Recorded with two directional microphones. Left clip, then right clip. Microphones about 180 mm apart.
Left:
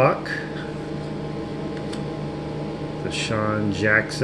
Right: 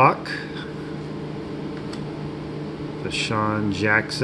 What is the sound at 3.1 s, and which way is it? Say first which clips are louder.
Speech: right 1 dB; 15° right (ahead or behind).